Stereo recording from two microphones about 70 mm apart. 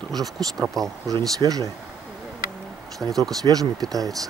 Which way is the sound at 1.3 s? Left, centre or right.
Right.